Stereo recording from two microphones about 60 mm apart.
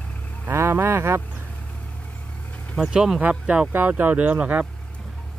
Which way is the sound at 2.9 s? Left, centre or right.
Centre.